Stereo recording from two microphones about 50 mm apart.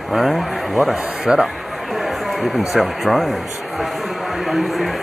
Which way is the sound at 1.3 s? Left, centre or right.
Centre.